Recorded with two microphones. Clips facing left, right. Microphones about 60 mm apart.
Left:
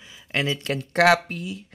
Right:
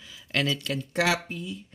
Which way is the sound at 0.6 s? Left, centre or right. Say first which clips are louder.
Left 7 dB; left.